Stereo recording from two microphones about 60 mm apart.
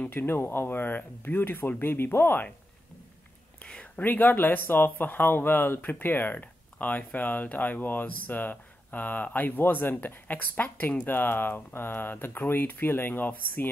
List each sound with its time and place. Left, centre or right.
0.0 s speech: left
3.6 s whispering: centre
4.0 s speech: left